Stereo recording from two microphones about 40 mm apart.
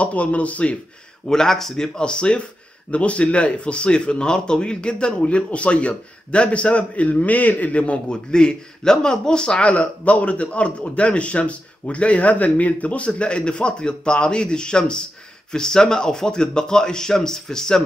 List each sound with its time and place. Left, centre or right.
0.0 s speech: left
1.2 s a man's voice: centre
2.0 s a man's voice: left